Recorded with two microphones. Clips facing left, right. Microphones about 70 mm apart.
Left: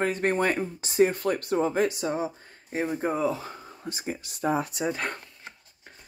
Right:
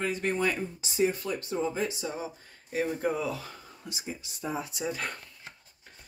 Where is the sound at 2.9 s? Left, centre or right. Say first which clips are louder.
Left 4 dB; left.